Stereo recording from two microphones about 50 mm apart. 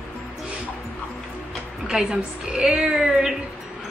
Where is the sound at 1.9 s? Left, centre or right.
Centre.